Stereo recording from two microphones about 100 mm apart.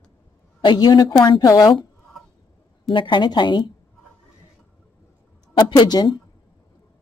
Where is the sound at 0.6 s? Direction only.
50° left (ahead or behind).